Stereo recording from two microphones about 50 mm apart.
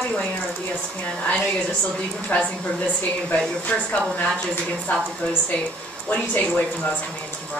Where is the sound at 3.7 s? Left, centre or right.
Left.